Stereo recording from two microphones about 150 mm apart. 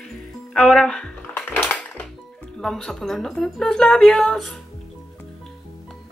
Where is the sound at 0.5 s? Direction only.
5° left (ahead or behind).